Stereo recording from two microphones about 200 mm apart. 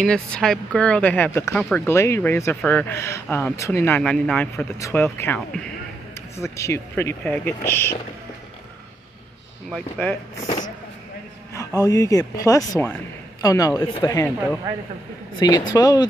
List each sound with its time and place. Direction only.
0.0 s speech: 5° left (ahead or behind)
9.7 s speech: 5° left (ahead or behind)
11.8 s speech: 15° left (ahead or behind)
15.3 s speech: 20° left (ahead or behind)